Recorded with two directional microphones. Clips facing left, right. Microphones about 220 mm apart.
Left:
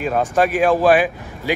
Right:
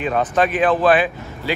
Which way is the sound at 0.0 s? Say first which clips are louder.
Left 1 dB; 10° left (ahead or behind).